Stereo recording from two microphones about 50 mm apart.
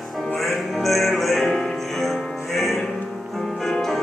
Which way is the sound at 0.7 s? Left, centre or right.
Centre.